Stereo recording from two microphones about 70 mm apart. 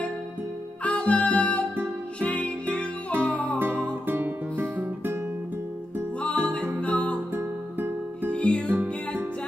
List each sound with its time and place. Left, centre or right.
0.8 s music: centre
3.5 s music: right
6.2 s music: centre
8.3 s music: centre
8.6 s music: right